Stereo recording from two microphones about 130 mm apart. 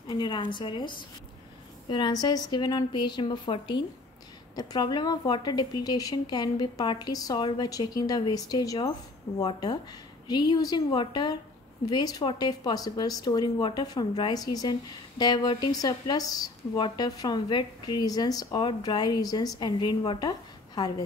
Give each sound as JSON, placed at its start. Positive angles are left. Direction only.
{"t": 0.1, "sound": "speech", "side_deg": 35}